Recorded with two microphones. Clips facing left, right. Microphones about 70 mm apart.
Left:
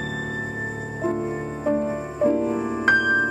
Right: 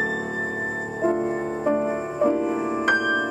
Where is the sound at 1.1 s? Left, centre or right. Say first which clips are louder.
Right 3 dB; centre.